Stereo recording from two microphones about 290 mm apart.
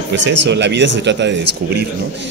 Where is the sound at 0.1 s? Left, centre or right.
Right.